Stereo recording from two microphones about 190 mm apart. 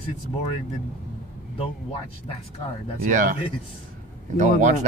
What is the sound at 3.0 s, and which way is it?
Speech, 45° right (ahead or behind).